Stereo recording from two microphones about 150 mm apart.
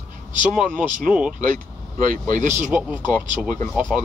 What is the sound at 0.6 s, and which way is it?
Speech, centre (ahead or behind).